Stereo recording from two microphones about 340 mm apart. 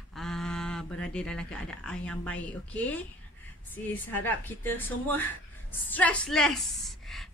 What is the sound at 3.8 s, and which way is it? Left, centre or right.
A woman's voice, centre.